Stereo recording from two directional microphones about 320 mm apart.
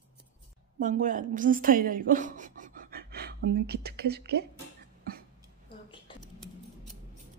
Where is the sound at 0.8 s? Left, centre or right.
Right.